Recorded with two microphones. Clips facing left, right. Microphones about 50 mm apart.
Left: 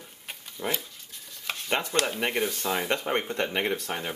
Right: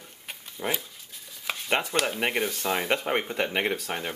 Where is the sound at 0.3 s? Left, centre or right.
Centre.